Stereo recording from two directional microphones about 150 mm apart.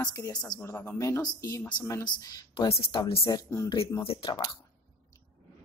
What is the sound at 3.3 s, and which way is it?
Speech, 20° left (ahead or behind).